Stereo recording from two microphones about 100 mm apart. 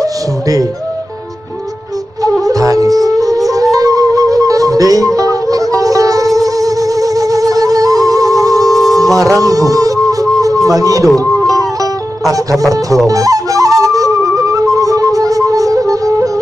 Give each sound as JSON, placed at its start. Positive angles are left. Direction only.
{"t": 0.0, "sound": "music", "side_deg": -35}
{"t": 2.2, "sound": "music", "side_deg": -35}
{"t": 10.4, "sound": "a sound", "side_deg": -35}
{"t": 11.1, "sound": "music", "side_deg": -35}